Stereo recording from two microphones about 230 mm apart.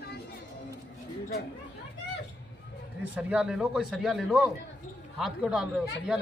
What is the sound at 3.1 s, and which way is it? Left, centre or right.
A man's voice, centre.